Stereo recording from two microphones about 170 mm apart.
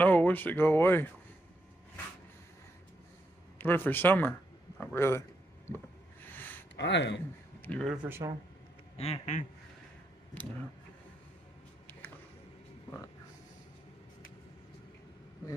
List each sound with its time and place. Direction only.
0.0 s speech: 10° left (ahead or behind)
3.5 s speech: 10° left (ahead or behind)
6.2 s a sound: 10° left (ahead or behind)
6.8 s speech: 90° left
7.6 s speech: 5° left (ahead or behind)
8.9 s speech: 35° left (ahead or behind)
10.3 s speech: 10° left (ahead or behind)